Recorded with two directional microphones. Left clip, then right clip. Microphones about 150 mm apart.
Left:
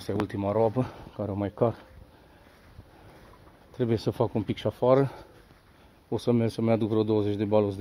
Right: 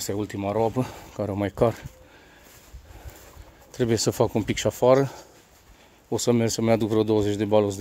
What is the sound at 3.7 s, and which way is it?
Speech, 40° right (ahead or behind).